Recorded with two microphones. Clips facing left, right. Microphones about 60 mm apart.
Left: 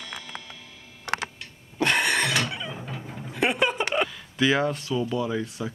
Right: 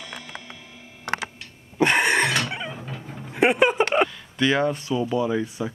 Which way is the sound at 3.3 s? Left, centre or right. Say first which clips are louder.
Right 5 dB; right.